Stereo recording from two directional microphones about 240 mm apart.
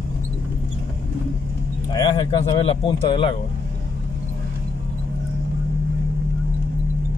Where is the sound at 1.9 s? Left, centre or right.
Left.